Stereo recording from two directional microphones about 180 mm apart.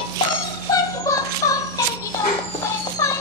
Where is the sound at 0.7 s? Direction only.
20° left (ahead or behind).